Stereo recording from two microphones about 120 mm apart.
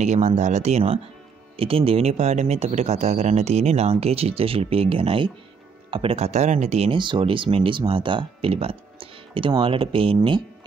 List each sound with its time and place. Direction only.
0.0 s speech: 75° right (ahead or behind)
1.6 s speech: 50° right (ahead or behind)
6.9 s speech: 45° right (ahead or behind)